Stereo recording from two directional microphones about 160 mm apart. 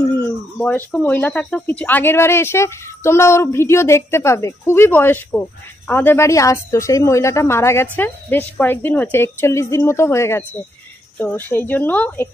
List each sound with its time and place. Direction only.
0.2 s speech: 10° left (ahead or behind)